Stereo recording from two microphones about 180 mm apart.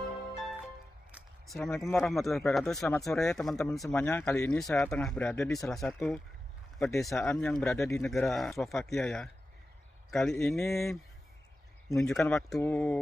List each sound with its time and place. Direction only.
0.4 s music: centre (ahead or behind)
1.1 s a sound: centre (ahead or behind)
2.0 s speech: centre (ahead or behind)
3.9 s speech: 10° left (ahead or behind)
4.7 s speech: 15° left (ahead or behind)
5.0 s speech: 5° left (ahead or behind)
8.1 s speech: centre (ahead or behind)
10.4 s speech: 15° left (ahead or behind)
11.9 s speech: 5° left (ahead or behind)